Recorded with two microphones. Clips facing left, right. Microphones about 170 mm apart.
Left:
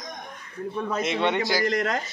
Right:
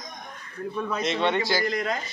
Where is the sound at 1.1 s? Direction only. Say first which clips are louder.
Right 1 dB; 15° left (ahead or behind).